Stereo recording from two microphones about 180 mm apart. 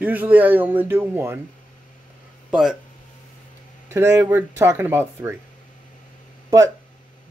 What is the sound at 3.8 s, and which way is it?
Speech, 15° right (ahead or behind).